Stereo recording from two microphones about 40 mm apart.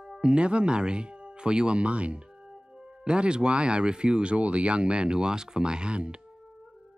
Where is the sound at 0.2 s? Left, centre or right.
Right.